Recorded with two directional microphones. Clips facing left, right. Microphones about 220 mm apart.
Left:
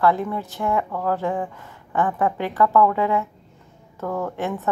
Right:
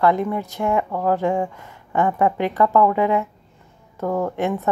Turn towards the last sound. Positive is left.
turn(degrees=-15)  # may be behind; listen again after turning